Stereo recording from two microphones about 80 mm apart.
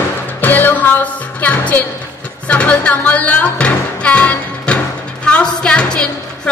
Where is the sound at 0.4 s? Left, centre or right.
Left.